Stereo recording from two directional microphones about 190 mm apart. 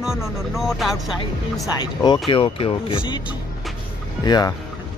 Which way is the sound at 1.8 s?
20° left (ahead or behind).